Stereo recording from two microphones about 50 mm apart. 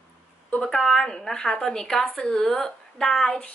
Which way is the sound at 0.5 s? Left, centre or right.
Left.